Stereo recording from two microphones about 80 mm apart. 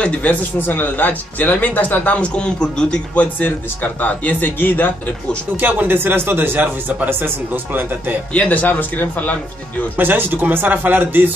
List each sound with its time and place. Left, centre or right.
0.0 s speech: centre
5.6 s a man's voice: right
8.3 s speech: centre
9.9 s a man's voice: right